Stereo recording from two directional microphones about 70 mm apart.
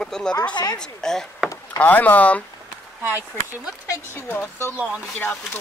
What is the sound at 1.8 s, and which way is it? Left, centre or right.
Speech, left.